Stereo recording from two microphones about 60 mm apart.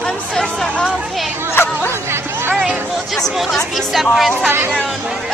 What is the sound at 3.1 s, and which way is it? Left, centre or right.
Speech, centre.